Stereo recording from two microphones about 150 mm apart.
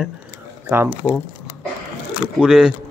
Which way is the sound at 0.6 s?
15° right (ahead or behind).